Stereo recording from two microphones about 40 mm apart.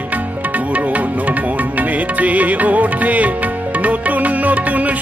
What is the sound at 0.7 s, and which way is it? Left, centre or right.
Music, right.